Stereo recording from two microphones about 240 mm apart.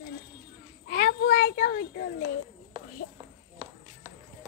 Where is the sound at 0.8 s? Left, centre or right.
Left.